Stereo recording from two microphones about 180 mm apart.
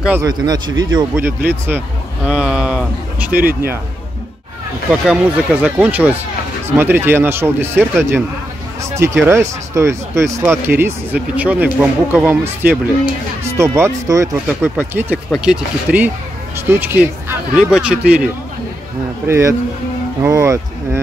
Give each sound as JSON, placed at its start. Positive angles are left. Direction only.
{"t": 0.2, "sound": "speech", "side_deg": -25}
{"t": 1.1, "sound": "speech", "side_deg": -10}
{"t": 3.3, "sound": "speech", "side_deg": -55}
{"t": 5.0, "sound": "speech", "side_deg": -5}